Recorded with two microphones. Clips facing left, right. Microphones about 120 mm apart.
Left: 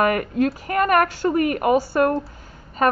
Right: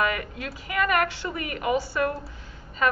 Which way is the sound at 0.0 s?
50° left (ahead or behind).